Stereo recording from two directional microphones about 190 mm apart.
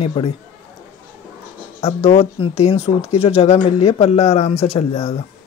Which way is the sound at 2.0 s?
30° left (ahead or behind).